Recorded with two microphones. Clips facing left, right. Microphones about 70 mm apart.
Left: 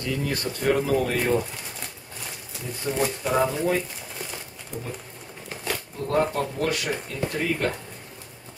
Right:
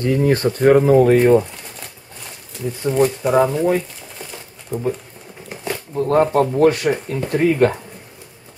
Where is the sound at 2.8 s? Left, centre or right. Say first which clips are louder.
Right 9 dB; right.